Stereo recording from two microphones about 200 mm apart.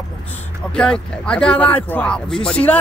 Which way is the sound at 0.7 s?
5° left (ahead or behind).